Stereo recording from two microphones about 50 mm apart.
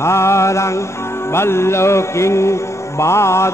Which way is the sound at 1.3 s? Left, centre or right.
Left.